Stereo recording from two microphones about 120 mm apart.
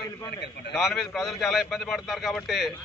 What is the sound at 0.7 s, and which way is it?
A man's voice, centre (ahead or behind).